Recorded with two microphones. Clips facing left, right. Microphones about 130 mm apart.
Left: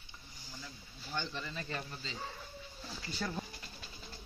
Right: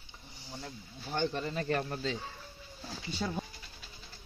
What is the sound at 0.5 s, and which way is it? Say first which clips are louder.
Speech: right 7 dB; 55° right (ahead or behind).